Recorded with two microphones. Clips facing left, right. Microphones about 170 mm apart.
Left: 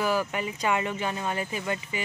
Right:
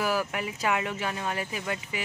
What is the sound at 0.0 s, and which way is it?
Speech, 5° right (ahead or behind).